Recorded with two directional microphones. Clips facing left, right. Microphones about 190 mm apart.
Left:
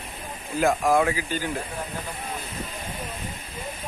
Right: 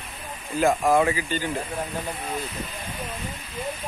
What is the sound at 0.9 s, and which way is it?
Speech, centre (ahead or behind).